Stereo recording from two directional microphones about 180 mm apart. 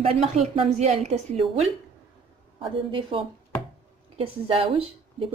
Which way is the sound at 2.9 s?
30° right (ahead or behind).